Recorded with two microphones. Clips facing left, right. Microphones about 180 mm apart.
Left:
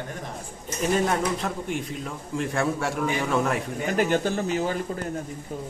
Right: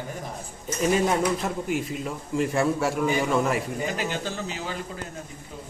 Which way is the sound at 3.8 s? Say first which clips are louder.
Left 6 dB; 55° left (ahead or behind).